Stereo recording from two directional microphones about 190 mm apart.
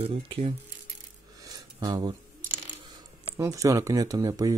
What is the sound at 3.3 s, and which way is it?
Speech, 15° right (ahead or behind).